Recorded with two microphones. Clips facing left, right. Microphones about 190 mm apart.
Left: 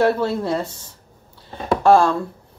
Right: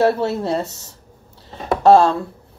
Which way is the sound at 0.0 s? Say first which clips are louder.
Right 1 dB; 30° right (ahead or behind).